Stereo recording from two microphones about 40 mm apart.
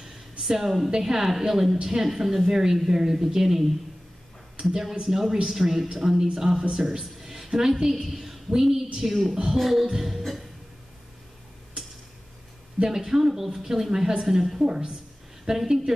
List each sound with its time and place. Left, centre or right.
0.0 s a sound: centre
0.8 s a woman's voice: centre
4.6 s speech: centre
5.0 s a woman's voice: centre
6.7 s a sound: centre
7.6 s a woman's voice: centre
9.8 s music: centre
12.8 s a woman's voice: centre
14.4 s speech: centre